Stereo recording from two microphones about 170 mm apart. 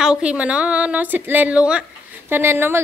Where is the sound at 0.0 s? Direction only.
5° right (ahead or behind).